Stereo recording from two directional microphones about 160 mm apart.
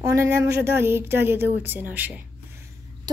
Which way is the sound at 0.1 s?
15° right (ahead or behind).